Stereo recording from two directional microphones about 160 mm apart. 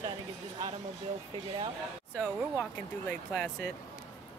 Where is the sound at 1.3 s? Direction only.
30° right (ahead or behind).